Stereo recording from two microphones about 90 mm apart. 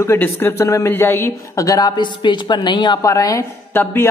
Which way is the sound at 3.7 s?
25° left (ahead or behind).